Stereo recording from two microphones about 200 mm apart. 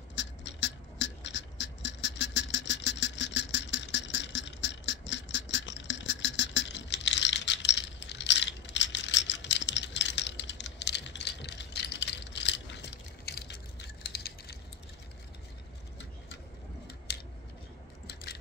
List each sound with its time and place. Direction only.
0.1 s beatboxing: 60° left (ahead or behind)
17.1 s scissors: 55° left (ahead or behind)
18.0 s a sound: 55° left (ahead or behind)